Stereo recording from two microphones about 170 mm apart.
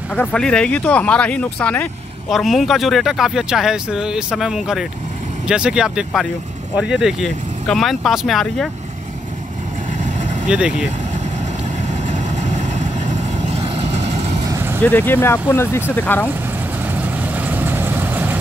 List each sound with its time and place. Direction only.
0.1 s speech: 5° left (ahead or behind)
10.1 s vehicle: 45° right (ahead or behind)
10.5 s speech: 5° right (ahead or behind)
11.9 s vehicle: 45° right (ahead or behind)
14.4 s vehicle: 15° right (ahead or behind)
14.8 s speech: 10° left (ahead or behind)
16.8 s vehicle: 10° right (ahead or behind)